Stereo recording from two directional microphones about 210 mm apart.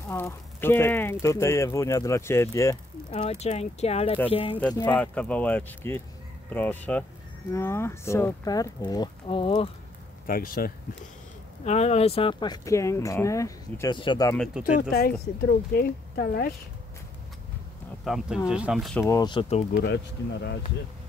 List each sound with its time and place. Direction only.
0.1 s speech: 10° left (ahead or behind)
3.1 s speech: 30° left (ahead or behind)
4.7 s speech: 10° left (ahead or behind); by 9.7 s 25° left (ahead or behind)
10.2 s speech: 45° left (ahead or behind)
11.6 s speech: 30° left (ahead or behind)
14.3 s speech: 5° left (ahead or behind)
14.6 s speech: 45° left (ahead or behind)
18.0 s speech: centre (ahead or behind)
19.0 s speech: 20° left (ahead or behind)
19.8 s speech: 55° left (ahead or behind)